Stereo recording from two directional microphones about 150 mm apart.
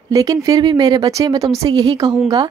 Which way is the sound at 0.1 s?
25° right (ahead or behind).